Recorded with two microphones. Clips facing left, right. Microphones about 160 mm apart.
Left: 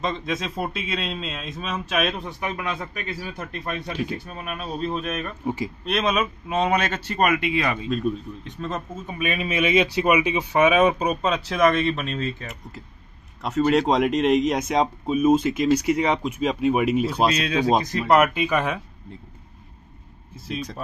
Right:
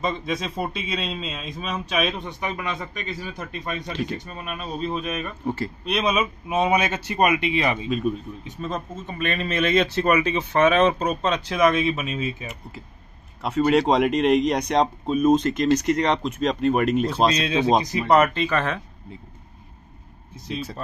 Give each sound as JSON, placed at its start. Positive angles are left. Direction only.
{"t": 0.0, "sound": "a man's voice", "side_deg": 0}
{"t": 7.9, "sound": "a man's voice", "side_deg": -5}
{"t": 17.3, "sound": "speech", "side_deg": -25}
{"t": 18.0, "sound": "speech", "side_deg": 5}
{"t": 20.4, "sound": "a man's voice", "side_deg": 5}